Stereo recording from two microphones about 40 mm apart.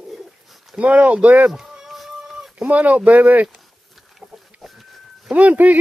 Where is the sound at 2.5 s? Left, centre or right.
Right.